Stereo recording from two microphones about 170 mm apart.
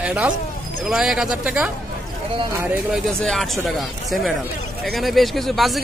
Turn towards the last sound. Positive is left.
turn(degrees=0)  # may be behind; listen again after turning